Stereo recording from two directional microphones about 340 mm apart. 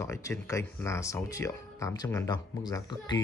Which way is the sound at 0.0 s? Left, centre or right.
Centre.